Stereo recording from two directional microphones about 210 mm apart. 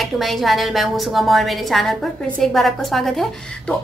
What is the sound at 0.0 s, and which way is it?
A woman's voice, centre (ahead or behind).